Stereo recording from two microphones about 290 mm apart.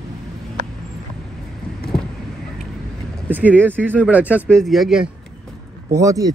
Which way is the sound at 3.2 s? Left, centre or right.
Centre.